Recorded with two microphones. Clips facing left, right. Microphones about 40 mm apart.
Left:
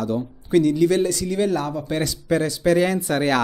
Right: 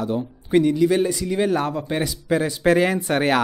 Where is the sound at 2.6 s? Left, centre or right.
Right.